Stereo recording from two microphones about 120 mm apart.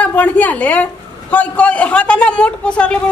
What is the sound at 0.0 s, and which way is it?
A man's voice, 15° left (ahead or behind).